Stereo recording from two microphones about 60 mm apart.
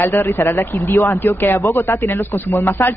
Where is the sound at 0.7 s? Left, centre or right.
Left.